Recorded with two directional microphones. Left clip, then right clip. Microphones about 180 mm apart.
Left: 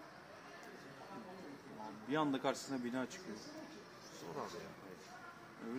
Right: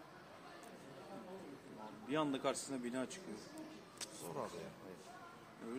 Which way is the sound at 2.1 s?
65° left (ahead or behind).